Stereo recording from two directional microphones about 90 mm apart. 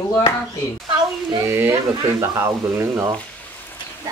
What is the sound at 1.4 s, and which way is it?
Speech, 30° right (ahead or behind).